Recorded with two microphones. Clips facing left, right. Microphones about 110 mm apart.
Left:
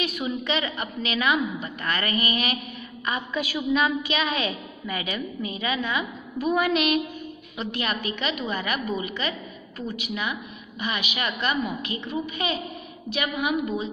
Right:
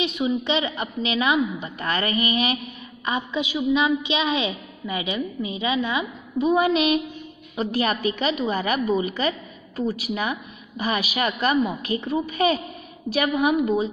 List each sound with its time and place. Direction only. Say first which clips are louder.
0.0 s a woman's voice: right 5 dB; 25° right (ahead or behind)